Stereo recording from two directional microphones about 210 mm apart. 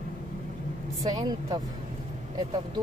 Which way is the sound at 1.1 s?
20° right (ahead or behind).